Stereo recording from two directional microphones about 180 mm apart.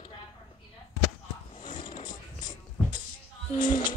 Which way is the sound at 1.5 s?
25° left (ahead or behind).